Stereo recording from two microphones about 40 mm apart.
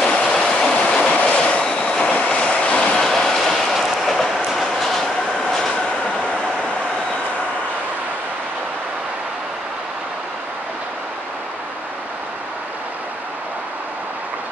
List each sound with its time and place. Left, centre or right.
0.0 s train: centre
1.2 s train: left
3.0 s train: centre